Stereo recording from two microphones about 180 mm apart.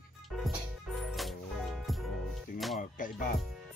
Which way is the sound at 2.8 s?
50° left (ahead or behind).